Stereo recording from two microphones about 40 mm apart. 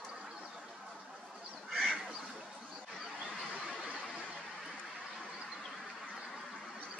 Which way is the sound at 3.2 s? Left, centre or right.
Left.